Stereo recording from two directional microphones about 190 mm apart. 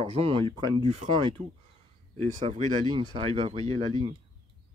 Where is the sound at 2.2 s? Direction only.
35° right (ahead or behind).